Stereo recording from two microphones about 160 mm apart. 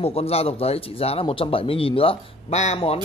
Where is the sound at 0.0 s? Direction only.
40° left (ahead or behind).